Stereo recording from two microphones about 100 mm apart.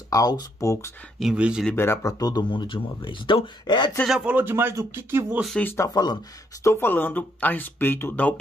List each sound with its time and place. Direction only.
0.1 s speech: 40° left (ahead or behind)
1.2 s speech: 10° right (ahead or behind)
1.8 s speech: 25° left (ahead or behind)
2.1 s speech: 40° left (ahead or behind)
2.5 s speech: 55° left (ahead or behind)
4.2 s speech: 15° right (ahead or behind)
5.6 s speech: 20° left (ahead or behind)